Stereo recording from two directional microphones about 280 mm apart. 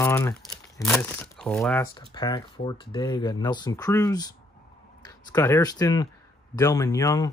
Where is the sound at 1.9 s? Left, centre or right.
Centre.